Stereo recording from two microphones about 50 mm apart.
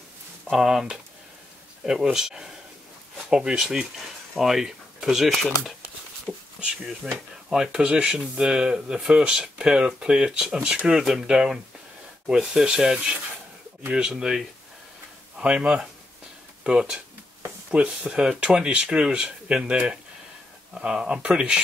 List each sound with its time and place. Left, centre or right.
0.5 s speech: centre